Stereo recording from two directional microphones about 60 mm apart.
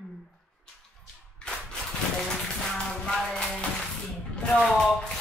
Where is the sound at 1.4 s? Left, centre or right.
Centre.